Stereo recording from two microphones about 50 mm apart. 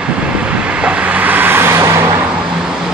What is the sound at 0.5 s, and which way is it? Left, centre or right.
Vehicle, right.